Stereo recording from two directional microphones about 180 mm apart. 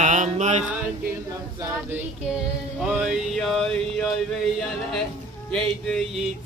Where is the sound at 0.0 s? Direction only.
40° right (ahead or behind).